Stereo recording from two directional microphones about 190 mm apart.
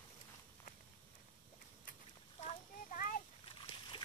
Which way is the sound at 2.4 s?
35° left (ahead or behind).